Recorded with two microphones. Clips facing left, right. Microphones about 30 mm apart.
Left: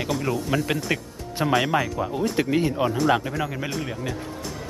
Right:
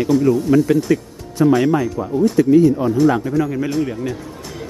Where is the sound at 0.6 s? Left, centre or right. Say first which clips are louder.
Right 9 dB; left.